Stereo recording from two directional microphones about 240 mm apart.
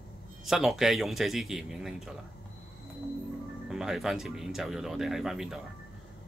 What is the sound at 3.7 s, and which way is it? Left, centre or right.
Speech, centre.